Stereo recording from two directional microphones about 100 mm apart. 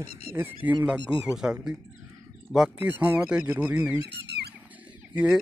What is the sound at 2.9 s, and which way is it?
Speech, 15° right (ahead or behind).